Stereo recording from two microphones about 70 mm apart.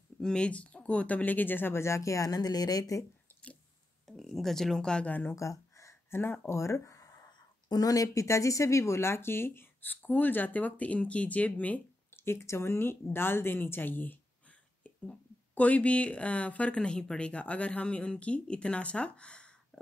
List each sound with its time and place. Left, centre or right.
0.2 s speech: centre; by 3.1 s left
4.2 s speech: centre
5.3 s speech: left
7.2 s speech: left
12.3 s speech: left; by 19.4 s centre